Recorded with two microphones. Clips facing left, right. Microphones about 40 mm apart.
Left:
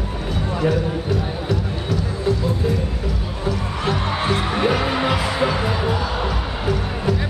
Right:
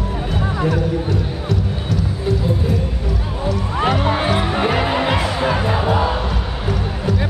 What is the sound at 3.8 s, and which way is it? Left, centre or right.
Music, centre.